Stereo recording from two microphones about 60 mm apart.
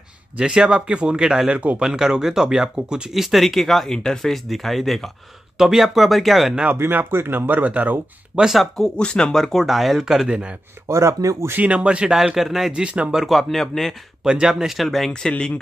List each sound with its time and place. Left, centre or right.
0.4 s speech: centre
1.8 s speech: centre
6.7 s speech: right
8.5 s speech: centre
10.9 s speech: right
11.5 s speech: right
12.2 s speech: centre
12.7 s speech: centre
13.1 s speech: centre
14.2 s speech: centre